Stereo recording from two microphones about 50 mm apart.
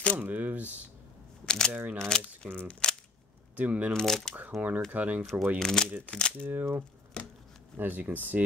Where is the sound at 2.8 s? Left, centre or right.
Centre.